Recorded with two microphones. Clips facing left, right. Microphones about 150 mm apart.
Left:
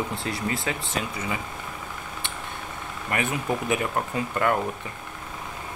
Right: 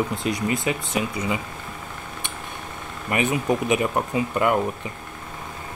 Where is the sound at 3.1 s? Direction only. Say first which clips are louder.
Right 5 dB; 20° right (ahead or behind).